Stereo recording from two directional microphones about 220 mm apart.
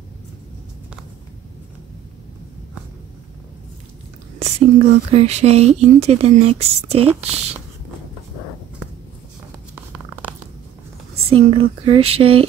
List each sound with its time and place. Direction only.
4.4 s speech: 30° right (ahead or behind)
11.2 s speech: 25° right (ahead or behind)